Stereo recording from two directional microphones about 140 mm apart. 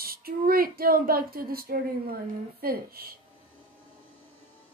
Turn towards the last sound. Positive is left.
turn(degrees=-90)